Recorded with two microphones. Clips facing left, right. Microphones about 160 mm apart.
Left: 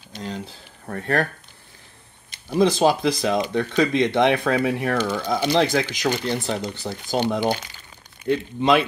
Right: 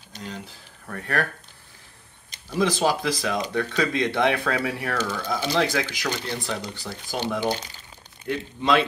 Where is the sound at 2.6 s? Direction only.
25° left (ahead or behind).